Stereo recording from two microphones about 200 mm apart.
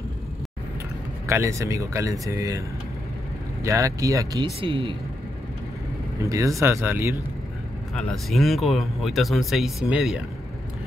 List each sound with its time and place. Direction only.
1.2 s speech: 15° right (ahead or behind)
3.6 s speech: 15° right (ahead or behind)
6.2 s speech: 15° right (ahead or behind)
7.9 s speech: centre (ahead or behind)